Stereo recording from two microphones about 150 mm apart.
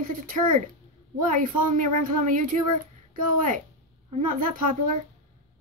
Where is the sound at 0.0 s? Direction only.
65° right (ahead or behind).